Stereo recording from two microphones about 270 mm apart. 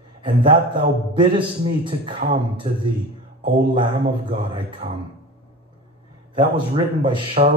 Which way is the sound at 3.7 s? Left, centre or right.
Centre.